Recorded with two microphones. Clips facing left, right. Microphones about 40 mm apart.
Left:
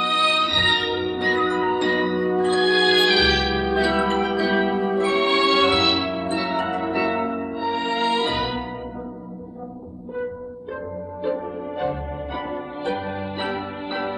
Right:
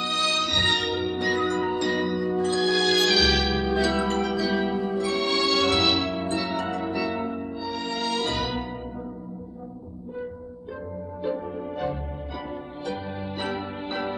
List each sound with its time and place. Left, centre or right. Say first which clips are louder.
0.0 s music: left 6 dB; left
5.8 s music: left 2 dB; centre
11.2 s music: left 3 dB; left